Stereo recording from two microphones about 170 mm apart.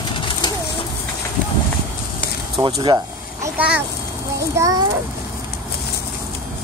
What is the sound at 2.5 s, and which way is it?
Speech, 25° right (ahead or behind).